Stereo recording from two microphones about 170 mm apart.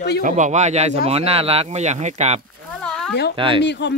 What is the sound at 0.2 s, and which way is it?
Speech, 45° right (ahead or behind).